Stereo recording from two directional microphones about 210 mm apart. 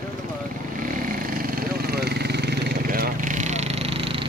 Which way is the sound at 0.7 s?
40° right (ahead or behind).